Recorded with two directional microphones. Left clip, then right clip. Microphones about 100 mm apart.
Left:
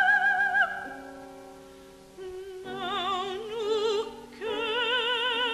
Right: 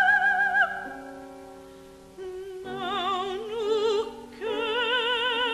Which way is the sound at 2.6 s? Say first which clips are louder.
Right 2 dB; 30° left (ahead or behind).